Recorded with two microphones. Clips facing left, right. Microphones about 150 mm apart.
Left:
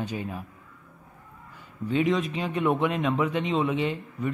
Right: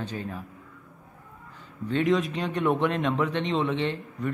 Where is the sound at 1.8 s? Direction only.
5° left (ahead or behind).